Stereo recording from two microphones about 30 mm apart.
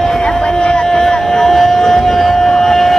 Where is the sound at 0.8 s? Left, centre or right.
Centre.